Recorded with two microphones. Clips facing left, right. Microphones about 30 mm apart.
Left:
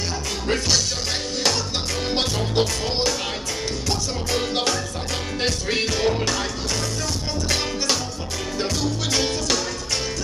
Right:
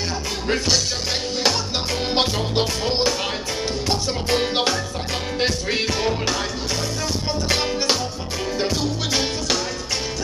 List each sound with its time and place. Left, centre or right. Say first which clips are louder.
0.5 s music: right 1 dB; centre
2.1 s music: right 1 dB; right
5.4 s music: right 1 dB; centre
7.4 s music: right 2 dB; centre